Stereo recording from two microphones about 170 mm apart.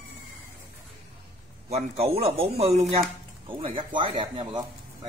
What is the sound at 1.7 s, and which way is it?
Speech, 40° right (ahead or behind).